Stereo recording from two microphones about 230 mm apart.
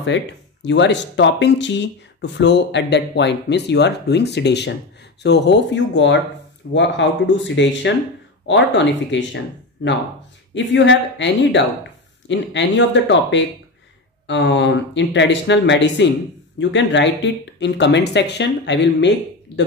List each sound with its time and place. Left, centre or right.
0.0 s speech: left